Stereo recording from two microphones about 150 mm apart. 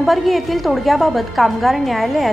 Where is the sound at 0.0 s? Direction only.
Centre (ahead or behind).